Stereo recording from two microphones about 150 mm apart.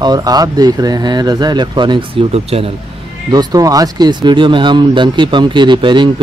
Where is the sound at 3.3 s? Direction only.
25° right (ahead or behind).